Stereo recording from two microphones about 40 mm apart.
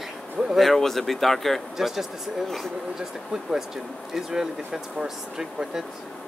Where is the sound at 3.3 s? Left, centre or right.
Centre.